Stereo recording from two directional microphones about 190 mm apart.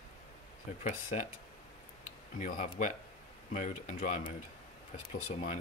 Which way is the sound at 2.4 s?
40° left (ahead or behind).